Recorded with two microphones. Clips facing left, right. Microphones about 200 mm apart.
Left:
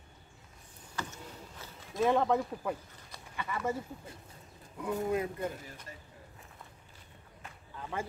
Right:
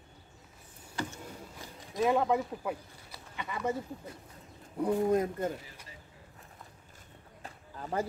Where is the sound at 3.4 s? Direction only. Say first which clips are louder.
Right 1 dB; 15° right (ahead or behind).